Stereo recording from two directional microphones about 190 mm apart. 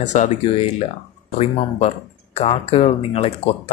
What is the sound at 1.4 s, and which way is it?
Speech, 35° left (ahead or behind).